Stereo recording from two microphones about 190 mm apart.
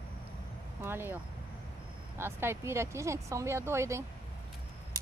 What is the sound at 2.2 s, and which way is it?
Speech, 15° right (ahead or behind).